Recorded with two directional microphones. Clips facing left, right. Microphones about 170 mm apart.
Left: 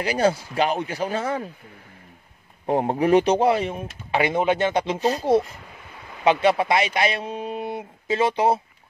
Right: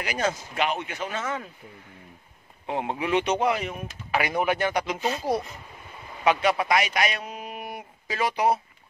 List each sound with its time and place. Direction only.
0.0 s speech: 30° left (ahead or behind)
2.6 s speech: 45° left (ahead or behind)
6.2 s a man's voice: 25° left (ahead or behind)